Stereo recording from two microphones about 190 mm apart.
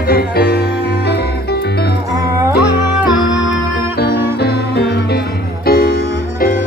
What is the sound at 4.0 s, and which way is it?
Music, 55° left (ahead or behind).